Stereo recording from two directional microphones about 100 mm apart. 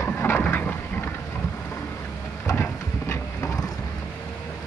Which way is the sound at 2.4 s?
25° left (ahead or behind).